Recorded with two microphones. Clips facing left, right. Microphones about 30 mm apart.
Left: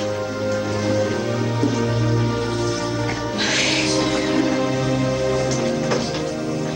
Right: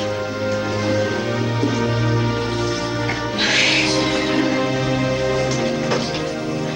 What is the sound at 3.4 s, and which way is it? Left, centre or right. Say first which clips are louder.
Music: right 3 dB; right.